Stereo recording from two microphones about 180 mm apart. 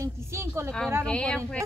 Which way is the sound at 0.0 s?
15° right (ahead or behind).